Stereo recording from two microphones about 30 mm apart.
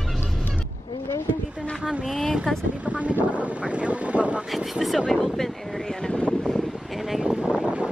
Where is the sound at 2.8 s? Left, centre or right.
Right.